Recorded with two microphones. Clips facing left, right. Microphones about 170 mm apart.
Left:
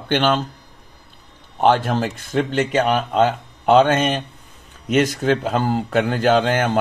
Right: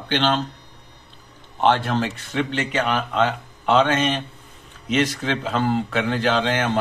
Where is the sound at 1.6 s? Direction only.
45° left (ahead or behind).